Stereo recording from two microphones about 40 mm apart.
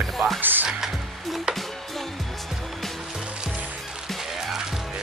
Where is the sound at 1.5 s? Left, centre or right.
Centre.